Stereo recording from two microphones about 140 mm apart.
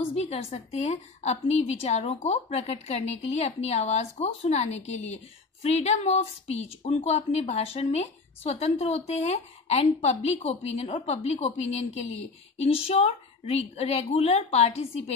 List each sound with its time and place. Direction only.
0.1 s a woman's voice: 50° left (ahead or behind)